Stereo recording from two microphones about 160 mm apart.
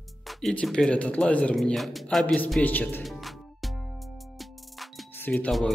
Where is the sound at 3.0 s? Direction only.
Centre (ahead or behind).